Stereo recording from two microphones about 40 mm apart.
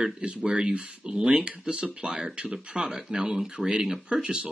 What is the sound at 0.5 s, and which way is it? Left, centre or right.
Speech, right.